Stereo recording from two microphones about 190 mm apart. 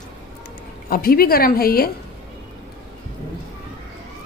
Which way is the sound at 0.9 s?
50° left (ahead or behind).